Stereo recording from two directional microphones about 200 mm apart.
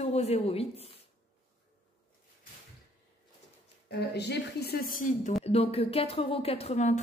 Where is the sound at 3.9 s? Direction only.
55° left (ahead or behind).